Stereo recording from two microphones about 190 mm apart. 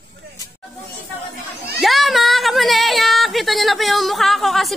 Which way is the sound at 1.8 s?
Centre (ahead or behind).